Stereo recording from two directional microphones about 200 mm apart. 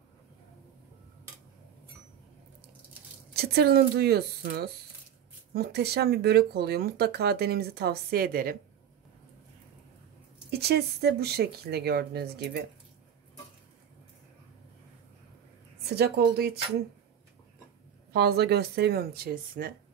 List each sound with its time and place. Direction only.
3.3 s speech: 50° right (ahead or behind)
10.5 s speech: 50° right (ahead or behind)
15.9 s speech: 55° right (ahead or behind)
18.1 s speech: 55° right (ahead or behind)